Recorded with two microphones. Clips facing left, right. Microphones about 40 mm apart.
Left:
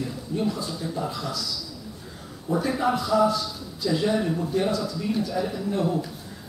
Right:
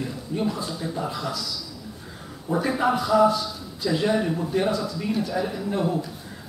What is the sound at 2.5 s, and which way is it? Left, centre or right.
Speech, centre.